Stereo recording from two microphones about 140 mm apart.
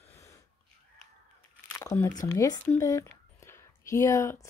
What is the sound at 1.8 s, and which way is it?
Speech, 20° left (ahead or behind).